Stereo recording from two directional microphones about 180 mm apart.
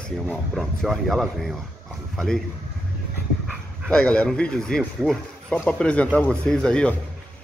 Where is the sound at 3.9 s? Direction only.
5° left (ahead or behind).